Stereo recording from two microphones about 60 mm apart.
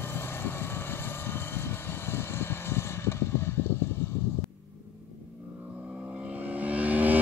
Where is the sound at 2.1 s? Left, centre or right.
Left.